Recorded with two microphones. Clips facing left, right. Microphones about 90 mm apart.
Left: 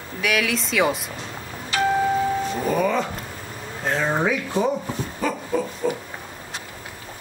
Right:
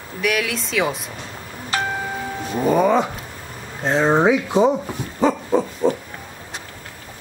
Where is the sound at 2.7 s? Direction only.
25° right (ahead or behind).